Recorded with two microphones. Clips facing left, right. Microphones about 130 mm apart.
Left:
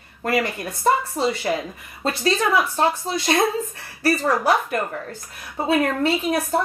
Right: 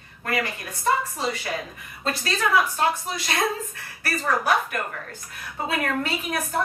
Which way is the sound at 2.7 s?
30° left (ahead or behind).